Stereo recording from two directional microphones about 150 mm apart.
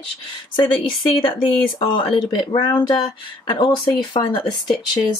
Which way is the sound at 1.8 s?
35° left (ahead or behind).